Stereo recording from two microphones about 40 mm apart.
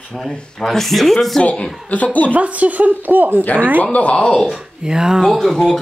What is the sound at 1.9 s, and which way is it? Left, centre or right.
Speech, left.